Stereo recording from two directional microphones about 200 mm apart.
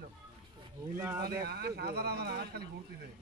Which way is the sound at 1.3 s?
50° right (ahead or behind).